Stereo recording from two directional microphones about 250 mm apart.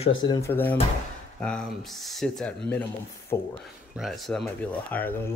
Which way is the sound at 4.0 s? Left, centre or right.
Centre.